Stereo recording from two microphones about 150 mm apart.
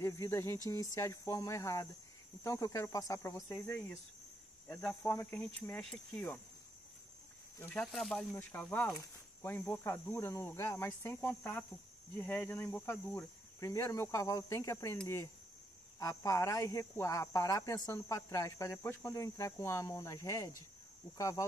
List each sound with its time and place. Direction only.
0.0 s cricket: 20° left (ahead or behind)
0.7 s speech: 20° left (ahead or behind)
3.6 s cricket: 15° left (ahead or behind)
7.6 s cricket: 5° left (ahead or behind)
13.6 s speech: 20° left (ahead or behind)
16.0 s speech: 20° left (ahead or behind)